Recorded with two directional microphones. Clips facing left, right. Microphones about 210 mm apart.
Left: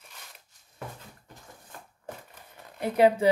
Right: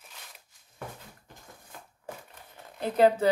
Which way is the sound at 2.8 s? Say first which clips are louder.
Left 1 dB; 10° left (ahead or behind).